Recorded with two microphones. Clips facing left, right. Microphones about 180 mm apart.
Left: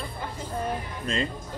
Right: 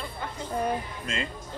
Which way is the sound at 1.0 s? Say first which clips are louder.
Left 4 dB; 40° left (ahead or behind).